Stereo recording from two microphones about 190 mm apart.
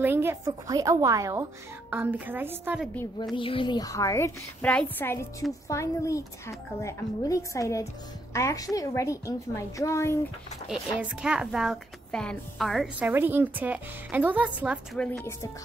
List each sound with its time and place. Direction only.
0.0 s a woman's voice: 10° right (ahead or behind)
3.3 s a woman's voice: 25° left (ahead or behind)
11.0 s a woman's voice: 5° right (ahead or behind)
15.0 s a woman's voice: 5° left (ahead or behind)